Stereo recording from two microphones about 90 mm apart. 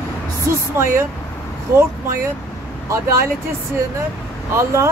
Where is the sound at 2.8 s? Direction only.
35° right (ahead or behind).